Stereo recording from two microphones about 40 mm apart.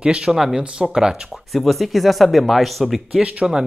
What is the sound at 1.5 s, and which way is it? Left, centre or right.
Speech, centre.